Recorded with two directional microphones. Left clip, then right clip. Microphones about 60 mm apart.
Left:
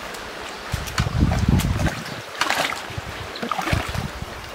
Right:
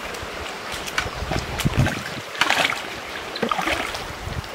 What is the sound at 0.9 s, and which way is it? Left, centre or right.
Boat, centre.